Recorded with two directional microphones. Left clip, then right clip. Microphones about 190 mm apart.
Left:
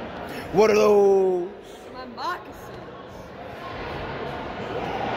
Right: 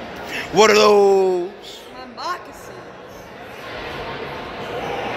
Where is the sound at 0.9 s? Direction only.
10° right (ahead or behind).